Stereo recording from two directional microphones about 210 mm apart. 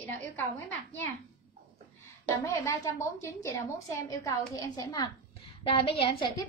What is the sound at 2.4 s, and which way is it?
A woman's voice, 15° left (ahead or behind).